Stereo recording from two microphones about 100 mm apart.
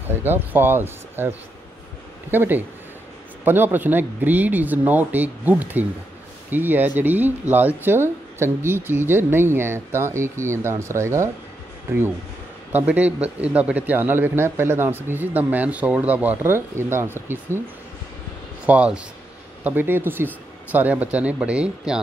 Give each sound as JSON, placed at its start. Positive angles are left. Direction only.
{"t": 0.1, "sound": "a man's voice", "side_deg": -20}
{"t": 2.3, "sound": "a man's voice", "side_deg": -20}
{"t": 18.7, "sound": "a man's voice", "side_deg": -10}